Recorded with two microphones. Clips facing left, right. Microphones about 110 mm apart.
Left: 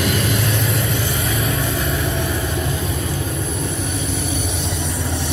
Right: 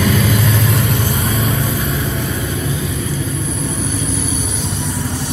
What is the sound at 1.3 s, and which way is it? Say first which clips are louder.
Vehicle: right 3 dB; 30° right (ahead or behind).